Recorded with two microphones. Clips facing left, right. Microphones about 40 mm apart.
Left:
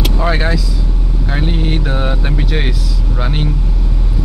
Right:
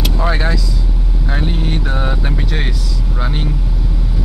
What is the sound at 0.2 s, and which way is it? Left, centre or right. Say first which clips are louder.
Speech: left 2 dB; centre.